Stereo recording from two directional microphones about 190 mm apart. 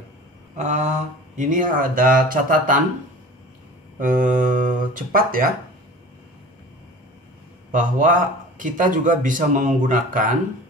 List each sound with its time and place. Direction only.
0.6 s a man's voice: 40° right (ahead or behind)
4.0 s a man's voice: 45° right (ahead or behind)
7.7 s a man's voice: 45° right (ahead or behind)